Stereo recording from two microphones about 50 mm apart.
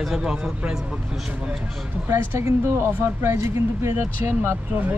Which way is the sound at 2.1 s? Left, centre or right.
Right.